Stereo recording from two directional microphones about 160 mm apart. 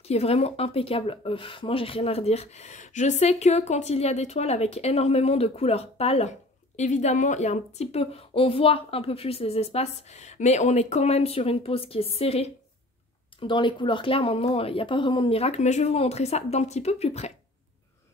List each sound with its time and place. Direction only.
0.0 s speech: 40° left (ahead or behind)